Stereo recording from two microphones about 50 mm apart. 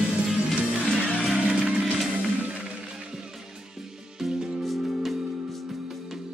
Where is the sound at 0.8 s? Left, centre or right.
Centre.